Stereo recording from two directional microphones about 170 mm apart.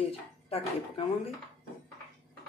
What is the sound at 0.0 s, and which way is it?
Speech, 35° left (ahead or behind).